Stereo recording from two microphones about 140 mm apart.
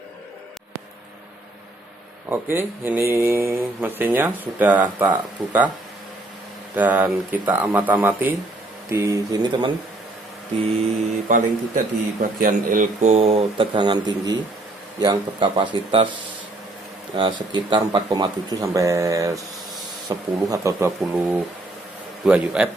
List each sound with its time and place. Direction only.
2.2 s speech: 15° right (ahead or behind)
6.7 s speech: 10° right (ahead or behind); by 9.7 s 30° right (ahead or behind)
10.6 s speech: 50° right (ahead or behind)
11.2 s speech: 65° right (ahead or behind); by 16.1 s 35° right (ahead or behind)
17.1 s speech: 35° right (ahead or behind)
22.2 s speech: 10° right (ahead or behind)